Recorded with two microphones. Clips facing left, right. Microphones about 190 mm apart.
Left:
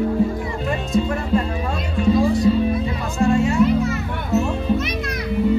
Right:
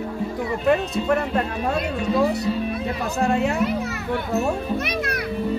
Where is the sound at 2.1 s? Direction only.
70° right (ahead or behind).